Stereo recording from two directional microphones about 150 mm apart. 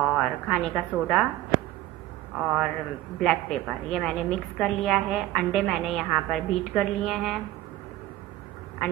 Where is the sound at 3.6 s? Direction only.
Centre (ahead or behind).